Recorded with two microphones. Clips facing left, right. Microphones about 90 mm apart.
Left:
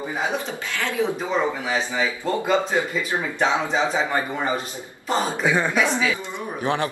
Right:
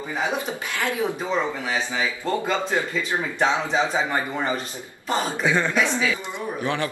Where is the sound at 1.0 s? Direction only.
20° left (ahead or behind).